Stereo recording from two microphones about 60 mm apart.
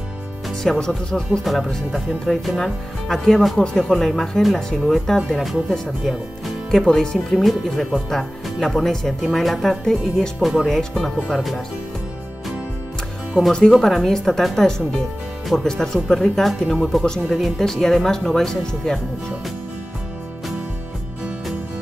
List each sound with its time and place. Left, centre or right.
0.5 s speech: centre
1.4 s speech: centre
6.9 s speech: centre
13.4 s speech: centre
13.7 s speech: centre